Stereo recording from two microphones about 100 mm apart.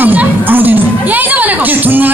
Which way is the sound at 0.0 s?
15° right (ahead or behind).